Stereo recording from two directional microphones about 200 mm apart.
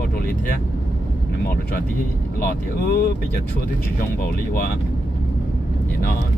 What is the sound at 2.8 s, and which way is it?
Speech, 45° left (ahead or behind).